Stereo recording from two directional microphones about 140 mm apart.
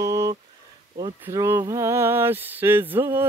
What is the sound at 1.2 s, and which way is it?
Speech, 20° right (ahead or behind).